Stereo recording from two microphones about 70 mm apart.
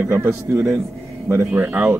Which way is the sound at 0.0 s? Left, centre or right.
Right.